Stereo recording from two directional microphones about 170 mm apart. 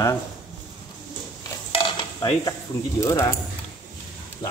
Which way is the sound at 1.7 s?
30° left (ahead or behind).